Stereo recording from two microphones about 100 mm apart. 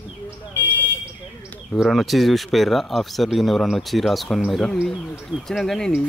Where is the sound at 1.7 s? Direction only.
Centre (ahead or behind).